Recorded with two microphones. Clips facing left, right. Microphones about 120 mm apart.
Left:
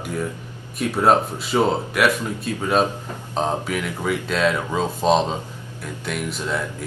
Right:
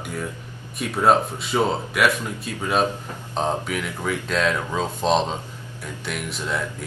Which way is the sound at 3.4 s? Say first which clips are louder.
Left 1 dB; centre (ahead or behind).